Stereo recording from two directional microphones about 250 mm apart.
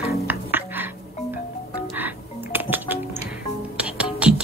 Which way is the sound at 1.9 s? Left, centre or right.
Centre.